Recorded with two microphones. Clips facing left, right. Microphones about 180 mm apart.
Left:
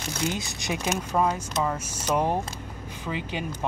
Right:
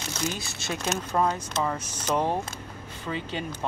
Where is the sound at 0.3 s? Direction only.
20° left (ahead or behind).